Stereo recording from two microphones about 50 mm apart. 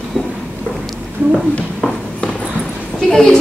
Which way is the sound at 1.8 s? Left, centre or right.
Left.